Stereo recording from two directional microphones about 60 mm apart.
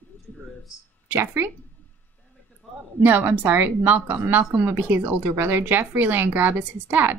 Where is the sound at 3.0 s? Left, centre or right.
Right.